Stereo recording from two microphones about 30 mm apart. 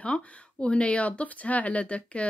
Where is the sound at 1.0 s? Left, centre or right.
Left.